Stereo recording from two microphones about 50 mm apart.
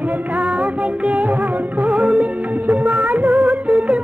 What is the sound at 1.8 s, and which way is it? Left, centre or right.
Music, right.